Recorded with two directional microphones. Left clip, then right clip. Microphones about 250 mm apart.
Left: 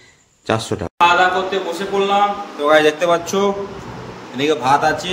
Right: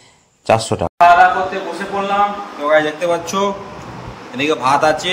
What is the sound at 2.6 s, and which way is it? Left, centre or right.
Speech, left.